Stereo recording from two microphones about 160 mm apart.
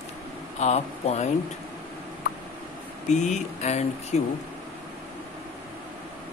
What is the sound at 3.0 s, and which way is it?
Speech, 50° left (ahead or behind).